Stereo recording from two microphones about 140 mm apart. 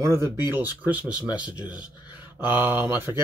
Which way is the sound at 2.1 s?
15° right (ahead or behind).